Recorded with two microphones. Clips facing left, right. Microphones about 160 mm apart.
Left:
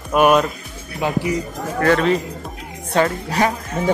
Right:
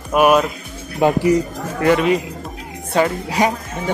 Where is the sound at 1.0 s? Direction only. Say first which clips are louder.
Right 7 dB; 50° right (ahead or behind).